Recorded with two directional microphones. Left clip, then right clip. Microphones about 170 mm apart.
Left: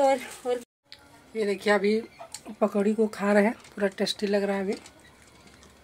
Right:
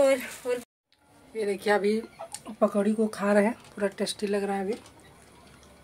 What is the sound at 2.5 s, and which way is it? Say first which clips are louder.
Speech: even; 15° left (ahead or behind).